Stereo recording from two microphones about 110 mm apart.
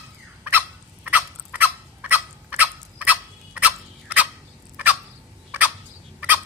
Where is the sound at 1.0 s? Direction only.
15° right (ahead or behind).